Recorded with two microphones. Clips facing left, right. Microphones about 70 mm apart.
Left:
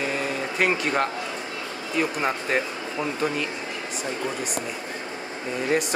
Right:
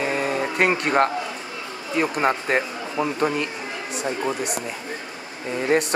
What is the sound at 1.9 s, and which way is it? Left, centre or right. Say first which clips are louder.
Speech: right 4 dB; right.